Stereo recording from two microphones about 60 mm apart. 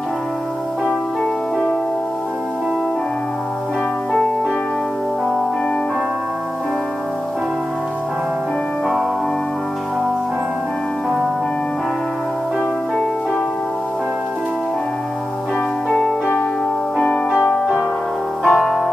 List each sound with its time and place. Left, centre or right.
18.4 s music: centre